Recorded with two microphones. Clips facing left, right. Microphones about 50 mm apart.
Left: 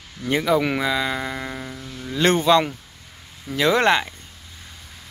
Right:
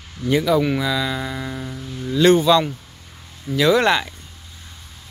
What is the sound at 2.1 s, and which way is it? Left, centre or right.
Speech, left.